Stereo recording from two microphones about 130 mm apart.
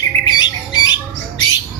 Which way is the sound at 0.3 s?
35° left (ahead or behind).